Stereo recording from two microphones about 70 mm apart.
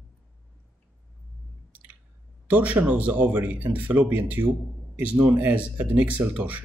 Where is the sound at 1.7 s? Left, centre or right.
Right.